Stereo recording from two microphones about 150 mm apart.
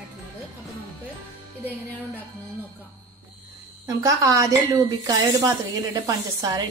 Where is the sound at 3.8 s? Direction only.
25° right (ahead or behind).